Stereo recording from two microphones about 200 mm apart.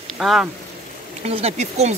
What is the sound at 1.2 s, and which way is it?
Speech, 30° right (ahead or behind).